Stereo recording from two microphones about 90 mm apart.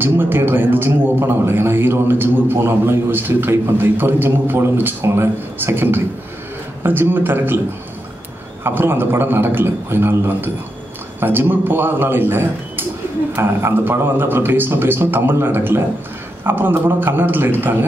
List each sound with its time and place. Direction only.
0.0 s a man's voice: 25° right (ahead or behind)
8.6 s a man's voice: 25° right (ahead or behind)